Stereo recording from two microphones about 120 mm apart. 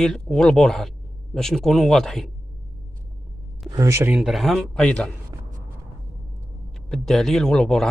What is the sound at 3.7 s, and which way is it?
Speech, 25° right (ahead or behind).